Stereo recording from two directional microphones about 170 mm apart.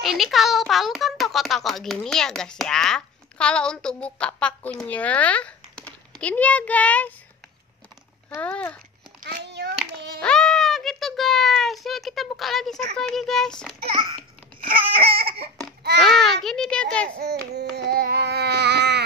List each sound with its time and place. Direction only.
0.0 s a child's voice: centre (ahead or behind)
8.4 s speech: 10° left (ahead or behind)
9.2 s a sound: 70° right (ahead or behind)
10.2 s a child's voice: 5° left (ahead or behind)
13.9 s babbling: 30° right (ahead or behind)
15.2 s a sound: 35° right (ahead or behind)
16.0 s a child's voice: centre (ahead or behind)
17.2 s baby cry: 75° right (ahead or behind)